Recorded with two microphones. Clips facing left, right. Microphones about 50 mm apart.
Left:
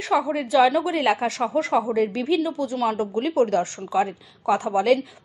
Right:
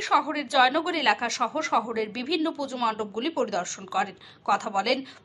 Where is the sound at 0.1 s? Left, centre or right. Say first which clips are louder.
Left 3 dB; centre.